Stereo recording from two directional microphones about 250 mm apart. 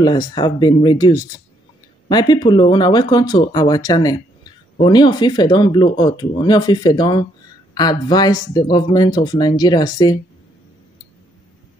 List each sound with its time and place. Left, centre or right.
0.3 s speech: centre